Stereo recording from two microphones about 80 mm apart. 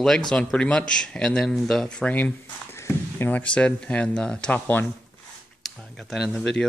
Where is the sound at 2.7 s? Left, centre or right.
Left.